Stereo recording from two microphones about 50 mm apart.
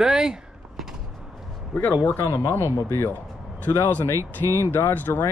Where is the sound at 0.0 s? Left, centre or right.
Centre.